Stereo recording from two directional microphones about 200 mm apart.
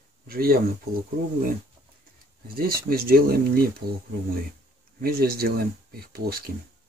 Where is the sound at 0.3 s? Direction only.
45° right (ahead or behind).